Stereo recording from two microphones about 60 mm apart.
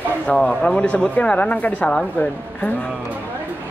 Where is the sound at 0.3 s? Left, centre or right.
Centre.